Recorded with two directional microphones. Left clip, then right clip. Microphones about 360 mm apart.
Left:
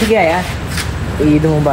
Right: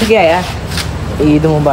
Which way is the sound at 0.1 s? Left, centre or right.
Centre.